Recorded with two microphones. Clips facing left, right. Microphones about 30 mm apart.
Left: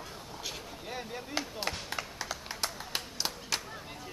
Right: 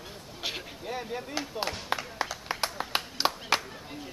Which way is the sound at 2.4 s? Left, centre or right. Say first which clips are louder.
Right 5 dB; right.